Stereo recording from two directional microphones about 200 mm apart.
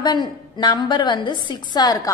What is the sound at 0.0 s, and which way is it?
A woman's voice, 20° left (ahead or behind).